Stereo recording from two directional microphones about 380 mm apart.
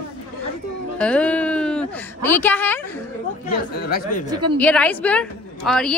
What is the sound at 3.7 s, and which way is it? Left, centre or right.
Speech, left.